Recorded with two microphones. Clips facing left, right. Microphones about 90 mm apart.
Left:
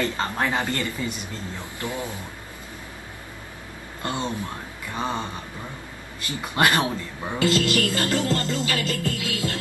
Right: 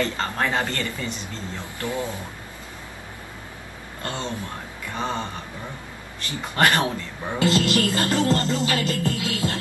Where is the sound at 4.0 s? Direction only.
20° left (ahead or behind).